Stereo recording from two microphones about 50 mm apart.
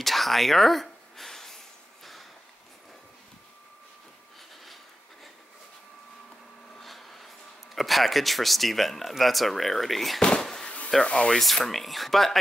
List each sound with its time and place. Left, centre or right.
0.0 s a sound: centre
6.8 s a sound: centre
7.7 s speech: centre
10.2 s fireworks: centre
11.1 s speech: centre
11.3 s speech: centre